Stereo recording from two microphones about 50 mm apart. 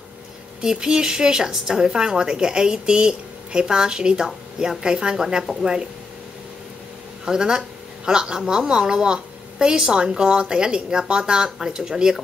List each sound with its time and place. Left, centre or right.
0.6 s speech: centre
7.2 s speech: centre